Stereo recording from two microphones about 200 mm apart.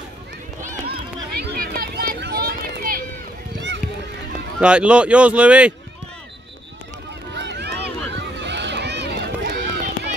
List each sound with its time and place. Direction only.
0.6 s a sound: 45° right (ahead or behind)
4.6 s speech: 5° right (ahead or behind)
7.3 s run: 60° right (ahead or behind)